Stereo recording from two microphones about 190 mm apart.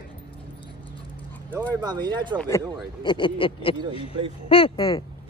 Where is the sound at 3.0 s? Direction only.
25° left (ahead or behind).